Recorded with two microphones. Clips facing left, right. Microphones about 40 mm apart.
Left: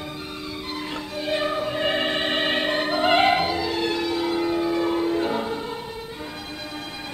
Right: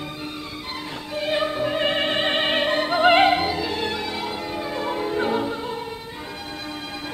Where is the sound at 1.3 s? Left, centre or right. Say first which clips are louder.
Right 1 dB; centre.